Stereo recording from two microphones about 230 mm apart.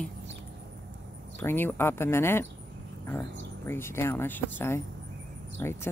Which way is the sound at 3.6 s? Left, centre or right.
Centre.